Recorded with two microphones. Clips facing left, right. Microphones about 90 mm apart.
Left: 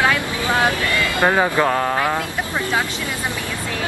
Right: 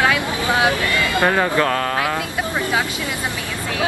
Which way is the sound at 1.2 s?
20° left (ahead or behind).